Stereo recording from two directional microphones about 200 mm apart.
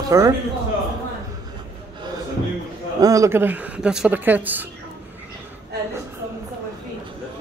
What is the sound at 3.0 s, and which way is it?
A man's voice, 15° right (ahead or behind).